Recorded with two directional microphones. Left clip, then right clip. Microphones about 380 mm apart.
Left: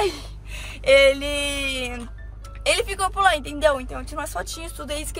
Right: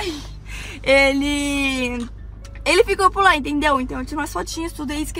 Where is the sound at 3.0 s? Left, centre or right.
Left.